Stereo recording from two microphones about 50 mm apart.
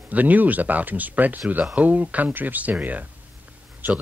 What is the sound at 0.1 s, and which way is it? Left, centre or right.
Speech, right.